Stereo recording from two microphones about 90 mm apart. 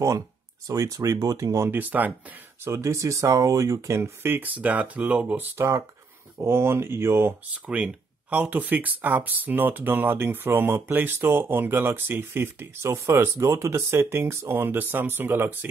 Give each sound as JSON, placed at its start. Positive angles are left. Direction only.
{"t": 0.7, "sound": "speech", "side_deg": -40}
{"t": 1.8, "sound": "speech", "side_deg": -20}
{"t": 2.6, "sound": "speech", "side_deg": -30}
{"t": 5.6, "sound": "speech", "side_deg": -35}
{"t": 7.6, "sound": "speech", "side_deg": -15}